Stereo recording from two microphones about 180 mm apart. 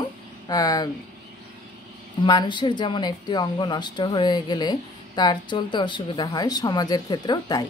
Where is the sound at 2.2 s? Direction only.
25° left (ahead or behind).